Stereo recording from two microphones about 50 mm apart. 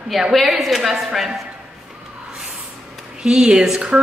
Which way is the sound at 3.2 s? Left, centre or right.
Centre.